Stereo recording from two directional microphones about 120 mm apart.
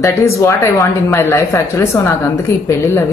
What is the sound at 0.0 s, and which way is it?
Speech, 25° left (ahead or behind).